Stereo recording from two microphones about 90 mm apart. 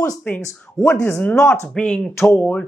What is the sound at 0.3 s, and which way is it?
Speech, 15° left (ahead or behind).